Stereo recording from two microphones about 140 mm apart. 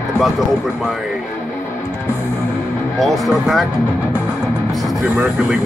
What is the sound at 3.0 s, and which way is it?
Speech, centre (ahead or behind).